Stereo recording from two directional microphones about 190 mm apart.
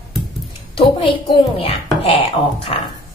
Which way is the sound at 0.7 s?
25° left (ahead or behind).